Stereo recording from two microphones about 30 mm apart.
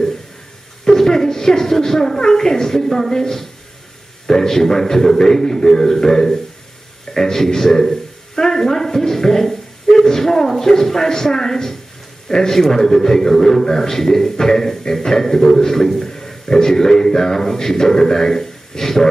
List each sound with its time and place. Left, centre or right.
0.8 s a woman's voice: centre